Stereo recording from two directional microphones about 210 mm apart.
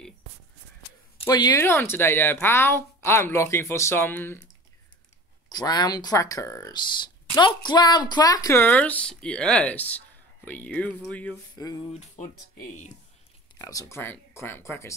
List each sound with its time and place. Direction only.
1.2 s speech: 20° left (ahead or behind)
5.5 s speech: 20° left (ahead or behind)
11.5 s a sound: 20° left (ahead or behind)
12.0 s speech: 35° left (ahead or behind)
13.6 s speech: 15° left (ahead or behind)